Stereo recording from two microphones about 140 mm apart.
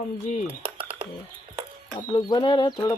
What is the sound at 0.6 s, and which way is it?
Music, 40° right (ahead or behind).